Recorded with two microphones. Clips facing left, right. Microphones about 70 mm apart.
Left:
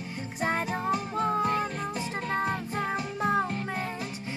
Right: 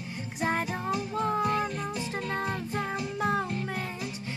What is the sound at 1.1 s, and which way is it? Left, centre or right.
Music, centre.